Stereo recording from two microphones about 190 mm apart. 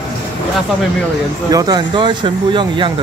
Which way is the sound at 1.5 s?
20° right (ahead or behind).